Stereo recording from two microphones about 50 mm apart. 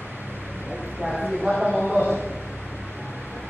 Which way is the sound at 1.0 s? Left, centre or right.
Centre.